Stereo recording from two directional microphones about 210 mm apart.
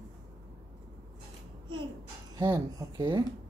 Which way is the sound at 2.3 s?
20° right (ahead or behind).